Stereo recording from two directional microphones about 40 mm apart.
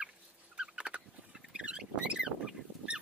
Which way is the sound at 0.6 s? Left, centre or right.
Right.